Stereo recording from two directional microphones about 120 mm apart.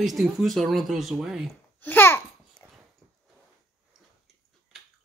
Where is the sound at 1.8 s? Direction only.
15° left (ahead or behind).